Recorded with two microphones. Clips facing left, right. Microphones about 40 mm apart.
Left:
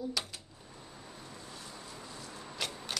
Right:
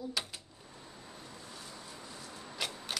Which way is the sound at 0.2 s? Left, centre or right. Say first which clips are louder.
Even; centre.